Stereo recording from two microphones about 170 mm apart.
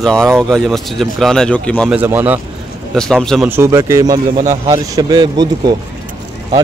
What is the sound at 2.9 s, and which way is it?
Speech, centre (ahead or behind).